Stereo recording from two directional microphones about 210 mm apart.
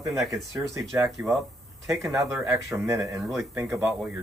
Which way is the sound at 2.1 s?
15° right (ahead or behind).